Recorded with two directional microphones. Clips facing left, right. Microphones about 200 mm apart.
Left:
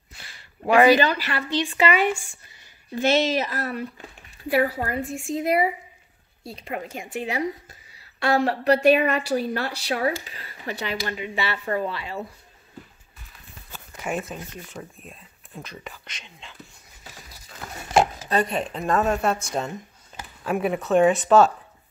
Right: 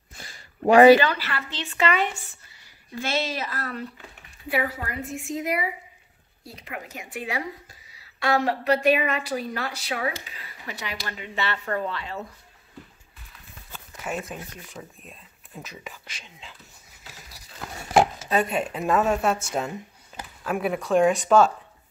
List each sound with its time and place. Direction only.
0.1 s a sound: 45° right (ahead or behind)
0.9 s a woman's voice: 15° left (ahead or behind)
4.6 s a woman's voice: 35° left (ahead or behind)
11.1 s a woman's voice: 10° left (ahead or behind)
13.7 s speech: 5° left (ahead or behind)
18.3 s speech: 5° right (ahead or behind)